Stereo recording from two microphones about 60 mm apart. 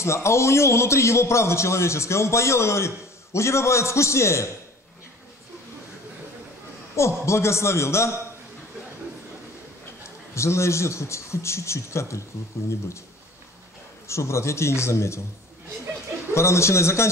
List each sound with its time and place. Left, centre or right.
0.0 s a man's voice: left
7.0 s a man's voice: left
10.3 s a man's voice: left
14.0 s a man's voice: left
16.3 s a man's voice: left